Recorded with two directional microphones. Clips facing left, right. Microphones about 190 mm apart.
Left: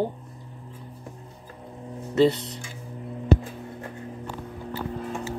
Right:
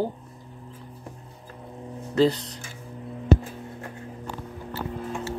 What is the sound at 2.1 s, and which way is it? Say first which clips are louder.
Speech: left 1 dB; centre (ahead or behind).